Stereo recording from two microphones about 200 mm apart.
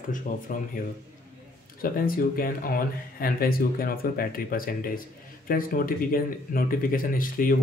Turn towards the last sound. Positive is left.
turn(degrees=45)  # may be behind; listen again after turning